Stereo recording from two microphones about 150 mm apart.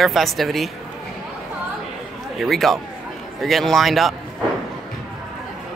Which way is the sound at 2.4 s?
Centre (ahead or behind).